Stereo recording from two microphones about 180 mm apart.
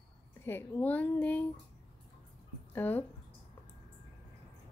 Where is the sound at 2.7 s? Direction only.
10° left (ahead or behind).